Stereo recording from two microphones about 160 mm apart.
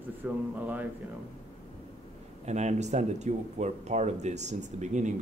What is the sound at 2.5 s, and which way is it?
Speech, 45° right (ahead or behind).